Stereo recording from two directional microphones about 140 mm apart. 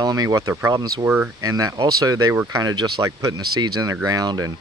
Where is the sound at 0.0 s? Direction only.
25° right (ahead or behind).